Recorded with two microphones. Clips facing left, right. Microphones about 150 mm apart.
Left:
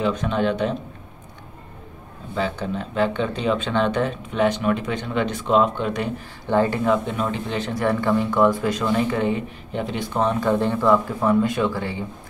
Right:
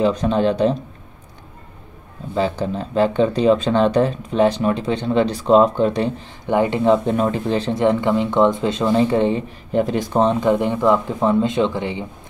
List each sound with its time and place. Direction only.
0.0 s speech: 35° right (ahead or behind)
2.3 s speech: 35° right (ahead or behind)
7.1 s speech: 40° right (ahead or behind)
10.2 s speech: 20° right (ahead or behind)